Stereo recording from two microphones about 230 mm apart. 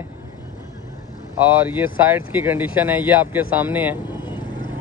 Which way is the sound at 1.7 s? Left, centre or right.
Centre.